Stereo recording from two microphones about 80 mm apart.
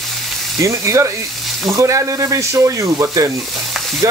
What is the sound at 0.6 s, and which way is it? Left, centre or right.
Speech, right.